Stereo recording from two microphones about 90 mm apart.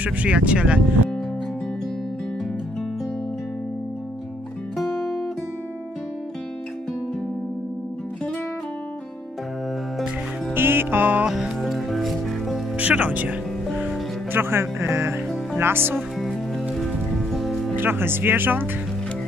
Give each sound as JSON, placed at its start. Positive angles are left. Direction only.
{"t": 0.0, "sound": "speech", "side_deg": -15}
{"t": 10.5, "sound": "music", "side_deg": -25}
{"t": 11.2, "sound": "music", "side_deg": -5}
{"t": 12.7, "sound": "speech", "side_deg": -15}
{"t": 13.7, "sound": "music", "side_deg": -20}
{"t": 16.2, "sound": "music", "side_deg": 0}
{"t": 17.7, "sound": "speech", "side_deg": -25}